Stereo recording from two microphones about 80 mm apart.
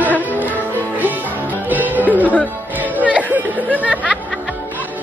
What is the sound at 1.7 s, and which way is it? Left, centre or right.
Music, right.